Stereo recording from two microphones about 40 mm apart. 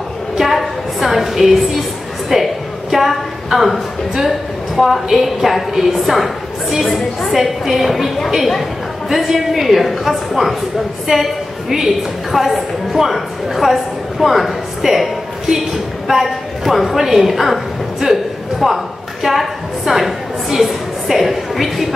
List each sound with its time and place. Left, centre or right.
0.4 s a sound: centre
4.7 s a woman's voice: centre
18.0 s a man's voice: centre
18.6 s a woman's voice: centre